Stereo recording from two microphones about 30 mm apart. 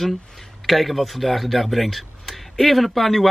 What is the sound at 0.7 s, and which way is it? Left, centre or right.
Speech, centre.